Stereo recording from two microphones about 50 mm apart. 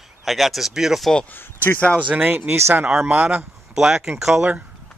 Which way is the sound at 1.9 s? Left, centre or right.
Right.